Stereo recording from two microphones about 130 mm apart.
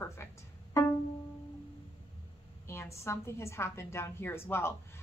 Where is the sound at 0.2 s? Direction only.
20° left (ahead or behind).